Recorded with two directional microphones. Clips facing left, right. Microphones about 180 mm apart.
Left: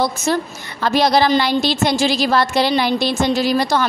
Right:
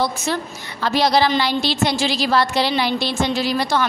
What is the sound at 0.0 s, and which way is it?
A woman's voice, 45° left (ahead or behind).